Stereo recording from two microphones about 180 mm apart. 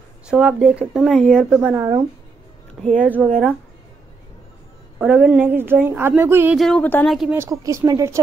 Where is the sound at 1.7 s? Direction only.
15° right (ahead or behind).